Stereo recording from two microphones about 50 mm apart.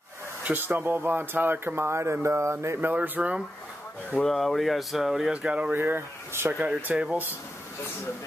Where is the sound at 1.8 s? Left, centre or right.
Right.